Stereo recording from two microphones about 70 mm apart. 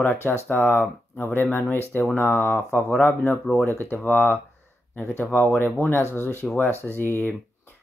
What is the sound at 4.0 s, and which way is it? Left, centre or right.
Speech, left.